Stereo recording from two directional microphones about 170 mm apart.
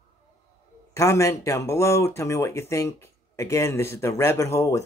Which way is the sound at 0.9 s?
15° left (ahead or behind).